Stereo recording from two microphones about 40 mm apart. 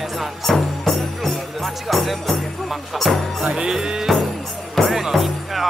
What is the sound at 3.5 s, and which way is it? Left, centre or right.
Music, centre.